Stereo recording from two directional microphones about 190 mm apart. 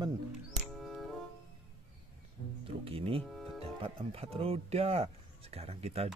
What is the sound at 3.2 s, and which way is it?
Music, centre (ahead or behind).